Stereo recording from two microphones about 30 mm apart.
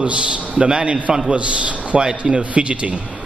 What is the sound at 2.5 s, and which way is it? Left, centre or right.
Speech, right.